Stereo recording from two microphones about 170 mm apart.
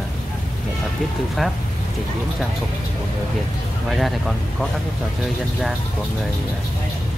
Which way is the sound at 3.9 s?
Centre (ahead or behind).